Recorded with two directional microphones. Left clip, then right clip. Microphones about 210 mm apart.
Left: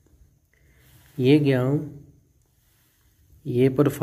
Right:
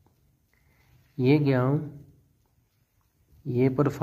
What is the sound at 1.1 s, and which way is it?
Speech, centre (ahead or behind).